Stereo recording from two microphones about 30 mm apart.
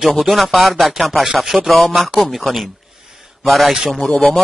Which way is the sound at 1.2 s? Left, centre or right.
Centre.